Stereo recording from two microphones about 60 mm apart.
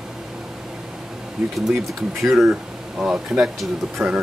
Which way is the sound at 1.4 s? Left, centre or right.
Centre.